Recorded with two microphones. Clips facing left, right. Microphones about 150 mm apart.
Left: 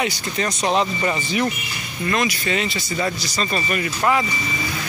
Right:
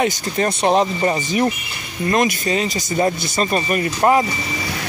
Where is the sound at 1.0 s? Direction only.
35° right (ahead or behind).